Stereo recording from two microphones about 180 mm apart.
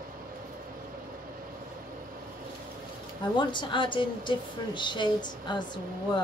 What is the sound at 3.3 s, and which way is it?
A woman's voice, 25° left (ahead or behind).